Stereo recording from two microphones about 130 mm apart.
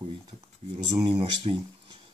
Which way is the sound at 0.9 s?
35° right (ahead or behind).